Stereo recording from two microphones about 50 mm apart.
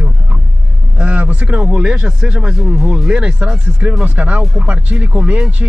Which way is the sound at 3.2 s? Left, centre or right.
Right.